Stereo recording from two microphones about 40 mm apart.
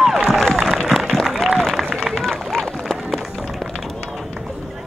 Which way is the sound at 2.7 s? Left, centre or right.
Centre.